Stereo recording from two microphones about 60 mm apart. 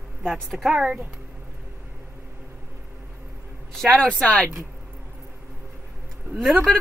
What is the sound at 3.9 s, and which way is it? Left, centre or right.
Speech, centre.